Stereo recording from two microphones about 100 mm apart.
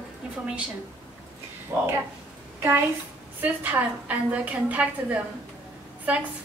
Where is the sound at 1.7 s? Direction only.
30° right (ahead or behind).